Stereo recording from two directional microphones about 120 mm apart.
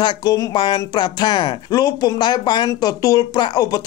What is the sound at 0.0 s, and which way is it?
Speech, 35° left (ahead or behind).